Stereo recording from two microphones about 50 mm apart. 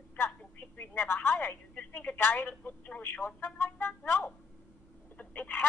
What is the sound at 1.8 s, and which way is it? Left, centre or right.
Speech, left.